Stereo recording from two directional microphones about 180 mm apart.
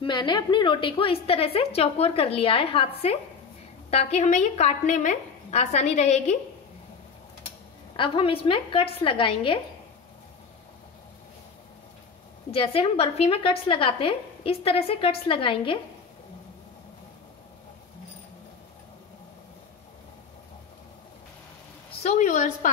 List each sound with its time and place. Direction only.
0.0 s a woman's voice: 25° left (ahead or behind)
7.9 s a woman's voice: 30° left (ahead or behind)
12.4 s a woman's voice: 30° left (ahead or behind)
22.0 s a woman's voice: 45° left (ahead or behind)